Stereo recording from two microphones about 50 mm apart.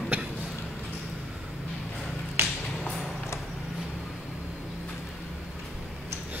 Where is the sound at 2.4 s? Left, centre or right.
Right.